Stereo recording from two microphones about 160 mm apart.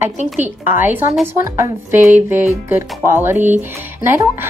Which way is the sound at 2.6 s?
15° right (ahead or behind).